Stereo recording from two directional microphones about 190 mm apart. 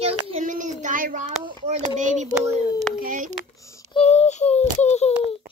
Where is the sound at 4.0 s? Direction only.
35° left (ahead or behind).